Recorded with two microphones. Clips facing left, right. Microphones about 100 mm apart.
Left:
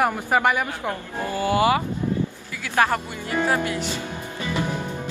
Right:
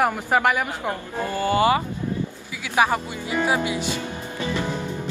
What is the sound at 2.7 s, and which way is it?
Speech, 15° right (ahead or behind).